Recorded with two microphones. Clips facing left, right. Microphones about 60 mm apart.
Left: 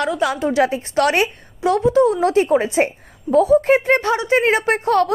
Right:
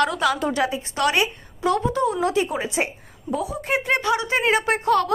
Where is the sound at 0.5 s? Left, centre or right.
Left.